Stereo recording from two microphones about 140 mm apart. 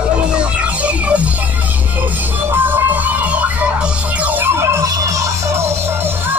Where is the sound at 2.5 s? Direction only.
15° right (ahead or behind).